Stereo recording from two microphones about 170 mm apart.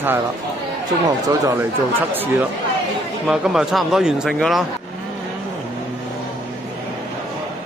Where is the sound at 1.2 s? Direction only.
15° right (ahead or behind).